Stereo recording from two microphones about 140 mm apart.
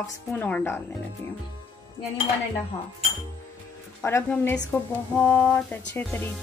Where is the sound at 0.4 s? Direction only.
10° left (ahead or behind).